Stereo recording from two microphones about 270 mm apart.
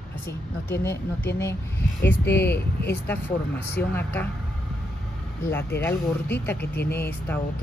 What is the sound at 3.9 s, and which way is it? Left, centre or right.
Speech, centre.